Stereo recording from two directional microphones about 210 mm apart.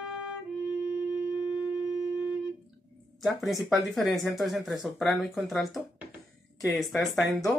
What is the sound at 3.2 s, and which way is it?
Speech, centre (ahead or behind).